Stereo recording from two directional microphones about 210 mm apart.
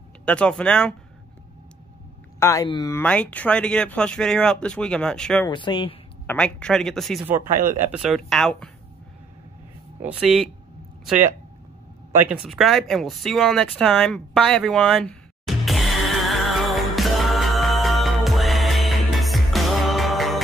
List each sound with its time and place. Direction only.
0.2 s speech: 5° left (ahead or behind)
2.4 s speech: 15° left (ahead or behind)
5.5 s speech: 20° left (ahead or behind)
6.2 s speech: 5° left (ahead or behind)
10.0 s speech: centre (ahead or behind)
12.3 s a sound: centre (ahead or behind)